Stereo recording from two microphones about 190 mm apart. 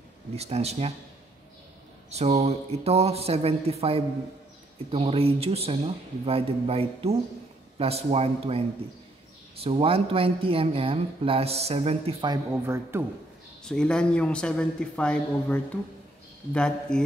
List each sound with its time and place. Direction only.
0.4 s a man's voice: 35° right (ahead or behind)
2.0 s a man's voice: 35° right (ahead or behind)
12.4 s speech: 15° right (ahead or behind)
13.7 s a man's voice: 5° left (ahead or behind)